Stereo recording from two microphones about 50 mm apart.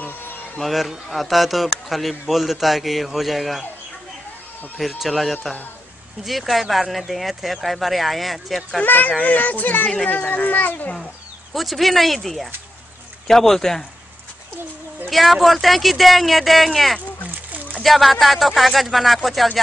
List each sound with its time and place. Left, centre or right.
0.6 s speech: centre
4.7 s speech: centre
8.8 s speech: left
11.5 s speech: centre
15.0 s speech: centre